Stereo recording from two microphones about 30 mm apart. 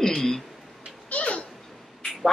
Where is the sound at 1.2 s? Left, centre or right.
Left.